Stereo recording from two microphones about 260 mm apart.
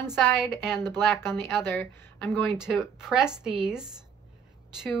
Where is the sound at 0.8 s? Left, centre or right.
Centre.